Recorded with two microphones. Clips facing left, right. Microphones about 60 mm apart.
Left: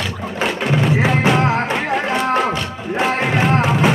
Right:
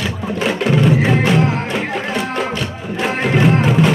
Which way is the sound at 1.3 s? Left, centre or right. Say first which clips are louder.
Even; left.